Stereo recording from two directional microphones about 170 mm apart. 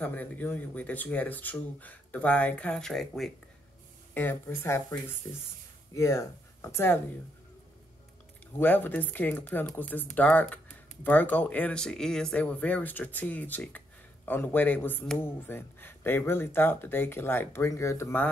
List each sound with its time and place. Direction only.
0.0 s speech: 10° left (ahead or behind)
8.5 s speech: 10° left (ahead or behind)